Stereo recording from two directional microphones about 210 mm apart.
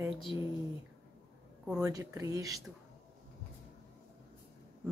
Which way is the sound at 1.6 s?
5° right (ahead or behind).